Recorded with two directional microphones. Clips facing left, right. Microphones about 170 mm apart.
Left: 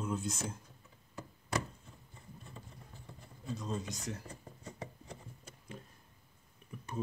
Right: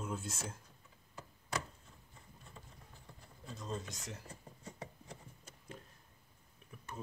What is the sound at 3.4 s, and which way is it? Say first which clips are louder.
Speech: left 4 dB; 5° left (ahead or behind).